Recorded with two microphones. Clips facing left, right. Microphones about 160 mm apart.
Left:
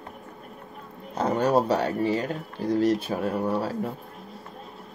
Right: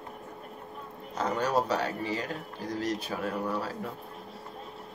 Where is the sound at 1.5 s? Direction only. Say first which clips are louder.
Left 5 dB; 30° left (ahead or behind).